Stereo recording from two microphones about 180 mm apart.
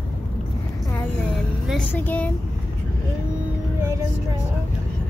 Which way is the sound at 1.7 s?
5° left (ahead or behind).